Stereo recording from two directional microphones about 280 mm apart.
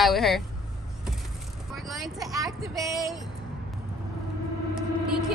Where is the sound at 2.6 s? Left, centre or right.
Centre.